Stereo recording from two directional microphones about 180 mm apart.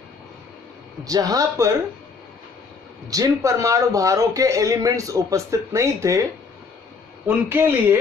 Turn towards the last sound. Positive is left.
turn(degrees=-10)  # may be behind; listen again after turning